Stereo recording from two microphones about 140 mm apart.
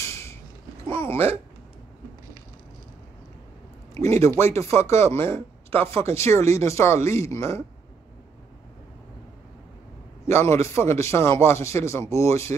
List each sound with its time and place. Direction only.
0.0 s a sound: 20° left (ahead or behind)
0.8 s speech: 15° left (ahead or behind)
3.9 s a man's voice: 20° left (ahead or behind)
10.3 s a man's voice: 20° left (ahead or behind)